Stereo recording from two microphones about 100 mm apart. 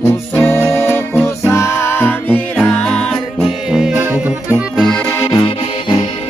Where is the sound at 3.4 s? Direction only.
5° right (ahead or behind).